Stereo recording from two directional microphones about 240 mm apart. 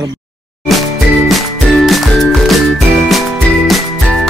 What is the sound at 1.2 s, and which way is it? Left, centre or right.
Music, centre.